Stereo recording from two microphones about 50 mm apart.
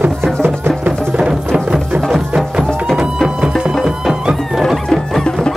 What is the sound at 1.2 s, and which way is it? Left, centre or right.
Music, centre.